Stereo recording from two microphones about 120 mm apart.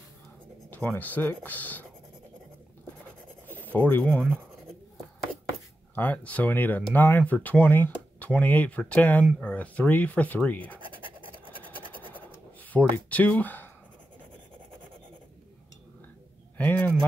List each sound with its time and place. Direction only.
0.7 s speech: 15° left (ahead or behind)
3.7 s speech: 15° left (ahead or behind)
5.9 s speech: 15° left (ahead or behind)
11.8 s scratch: 45° right (ahead or behind)
12.1 s writing: 15° left (ahead or behind)
16.5 s a sound: 15° left (ahead or behind)